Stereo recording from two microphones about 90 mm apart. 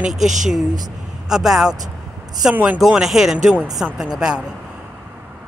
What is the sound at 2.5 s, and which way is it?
Speech, 20° right (ahead or behind).